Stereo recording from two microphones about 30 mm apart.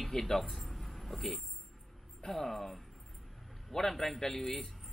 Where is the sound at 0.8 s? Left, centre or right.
Centre.